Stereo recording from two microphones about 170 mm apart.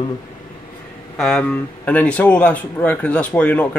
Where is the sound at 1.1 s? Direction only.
5° left (ahead or behind).